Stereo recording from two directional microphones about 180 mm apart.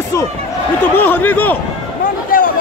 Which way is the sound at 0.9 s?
10° left (ahead or behind).